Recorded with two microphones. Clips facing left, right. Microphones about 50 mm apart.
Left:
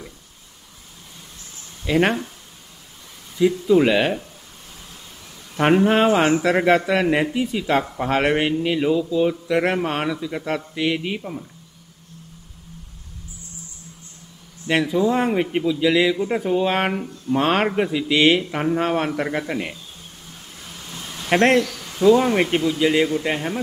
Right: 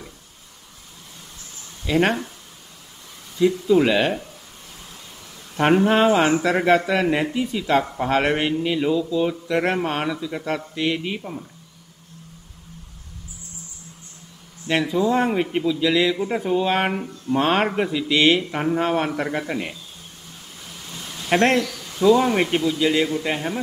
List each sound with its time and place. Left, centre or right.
1.9 s speech: centre
3.3 s speech: centre
5.6 s speech: centre
10.2 s speech: centre
14.7 s speech: centre
20.9 s vehicle: left
21.3 s speech: centre
21.6 s speech: left
23.2 s speech: centre